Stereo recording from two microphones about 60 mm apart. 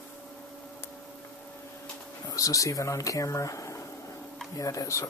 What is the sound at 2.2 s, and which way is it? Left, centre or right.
Speech, left.